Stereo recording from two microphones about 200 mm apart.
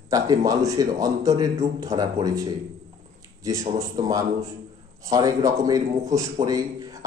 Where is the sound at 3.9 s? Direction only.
20° right (ahead or behind).